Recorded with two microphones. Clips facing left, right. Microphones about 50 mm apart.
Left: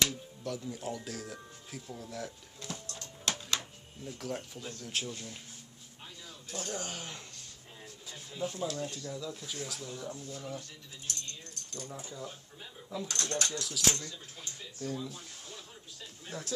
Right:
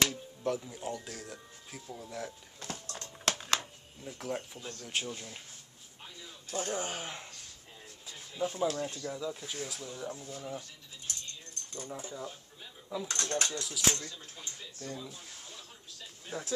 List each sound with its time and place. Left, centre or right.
0.1 s music: right
0.7 s speech: centre
2.6 s music: right
4.0 s speech: centre
6.5 s speech: right
8.4 s speech: right
11.7 s speech: right
13.1 s speech: right
14.0 s speech: centre
16.3 s speech: centre